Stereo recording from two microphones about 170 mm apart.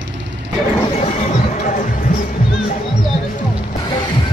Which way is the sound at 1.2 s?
45° left (ahead or behind).